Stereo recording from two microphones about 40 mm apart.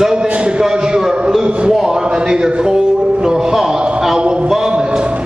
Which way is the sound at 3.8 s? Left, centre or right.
Right.